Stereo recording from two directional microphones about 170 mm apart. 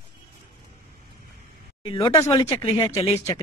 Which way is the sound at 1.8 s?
30° left (ahead or behind).